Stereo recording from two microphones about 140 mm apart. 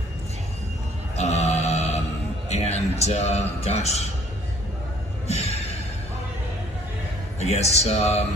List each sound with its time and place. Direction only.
1.1 s a sound: 50° left (ahead or behind)
2.5 s a man's voice: 50° left (ahead or behind)
5.3 s music: 50° left (ahead or behind)
7.3 s speech: 50° left (ahead or behind)